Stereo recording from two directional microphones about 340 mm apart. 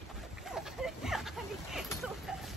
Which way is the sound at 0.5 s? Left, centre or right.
Centre.